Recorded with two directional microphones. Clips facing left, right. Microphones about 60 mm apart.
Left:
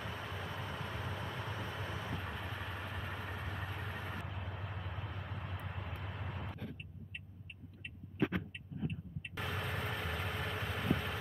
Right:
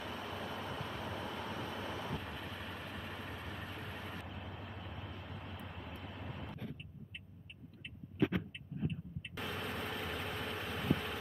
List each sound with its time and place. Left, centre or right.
0.0 s vehicle: centre
5.4 s vehicle: left
9.4 s vehicle: centre